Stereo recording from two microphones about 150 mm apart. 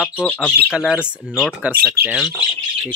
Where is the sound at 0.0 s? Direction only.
10° left (ahead or behind).